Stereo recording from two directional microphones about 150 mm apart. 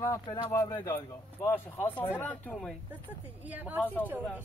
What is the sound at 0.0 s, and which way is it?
Speech, 20° left (ahead or behind).